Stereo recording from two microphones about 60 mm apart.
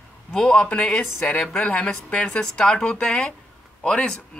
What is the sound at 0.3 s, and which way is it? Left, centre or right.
Speech, centre.